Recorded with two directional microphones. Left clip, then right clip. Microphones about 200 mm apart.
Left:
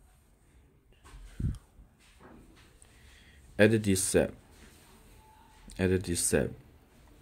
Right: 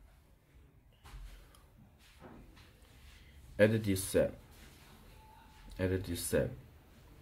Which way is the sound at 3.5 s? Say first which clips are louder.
Left 4 dB; 45° left (ahead or behind).